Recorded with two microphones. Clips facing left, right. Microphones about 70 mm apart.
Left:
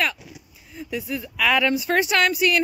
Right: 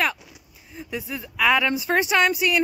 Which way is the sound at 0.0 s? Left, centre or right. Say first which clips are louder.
Right 1 dB; right.